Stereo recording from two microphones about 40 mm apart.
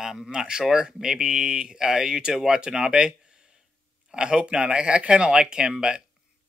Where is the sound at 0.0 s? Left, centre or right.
Centre.